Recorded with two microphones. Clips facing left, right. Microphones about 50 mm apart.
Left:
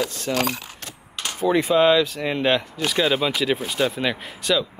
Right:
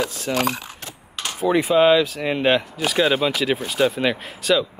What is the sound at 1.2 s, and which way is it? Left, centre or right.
Speech, centre.